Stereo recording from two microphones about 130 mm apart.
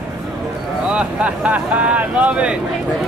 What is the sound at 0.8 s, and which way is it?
Speech, 10° right (ahead or behind).